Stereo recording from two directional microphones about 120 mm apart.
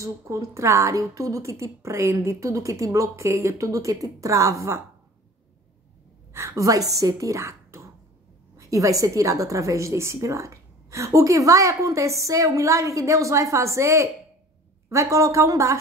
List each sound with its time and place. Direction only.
0.0 s a woman's voice: 25° right (ahead or behind)
6.3 s a woman's voice: 25° right (ahead or behind)